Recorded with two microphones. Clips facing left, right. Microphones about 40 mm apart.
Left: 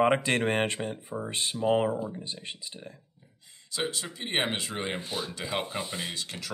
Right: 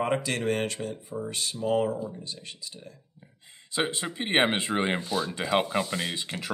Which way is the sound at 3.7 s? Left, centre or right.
Right.